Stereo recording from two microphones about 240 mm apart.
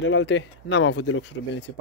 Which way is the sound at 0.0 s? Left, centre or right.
Left.